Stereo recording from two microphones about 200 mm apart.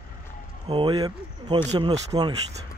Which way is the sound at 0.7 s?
20° right (ahead or behind).